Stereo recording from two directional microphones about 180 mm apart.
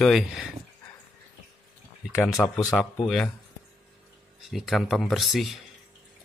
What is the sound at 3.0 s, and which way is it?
Speech, 5° left (ahead or behind).